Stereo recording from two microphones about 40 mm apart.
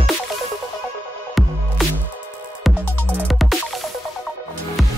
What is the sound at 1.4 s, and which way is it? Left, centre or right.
Music, centre.